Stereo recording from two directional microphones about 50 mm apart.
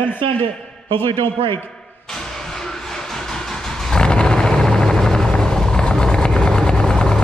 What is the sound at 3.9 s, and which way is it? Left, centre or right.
Vehicle, centre.